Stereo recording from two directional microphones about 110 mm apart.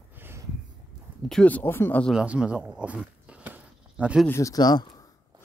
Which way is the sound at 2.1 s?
10° right (ahead or behind).